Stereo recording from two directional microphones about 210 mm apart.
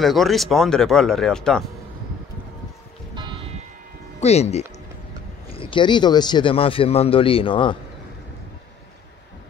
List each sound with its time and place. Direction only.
0.0 s speech: centre (ahead or behind)
3.2 s church bell: 20° right (ahead or behind)
4.2 s a man's voice: 30° left (ahead or behind)